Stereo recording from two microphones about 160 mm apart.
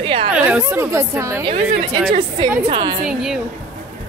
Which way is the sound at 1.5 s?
35° right (ahead or behind).